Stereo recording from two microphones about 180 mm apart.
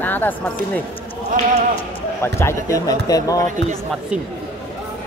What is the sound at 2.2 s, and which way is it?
Speech, 15° left (ahead or behind).